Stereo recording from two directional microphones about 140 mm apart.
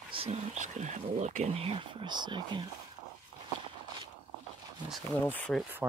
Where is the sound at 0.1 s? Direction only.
40° right (ahead or behind).